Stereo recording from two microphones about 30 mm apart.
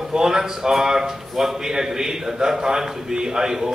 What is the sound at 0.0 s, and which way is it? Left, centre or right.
A man's voice, centre.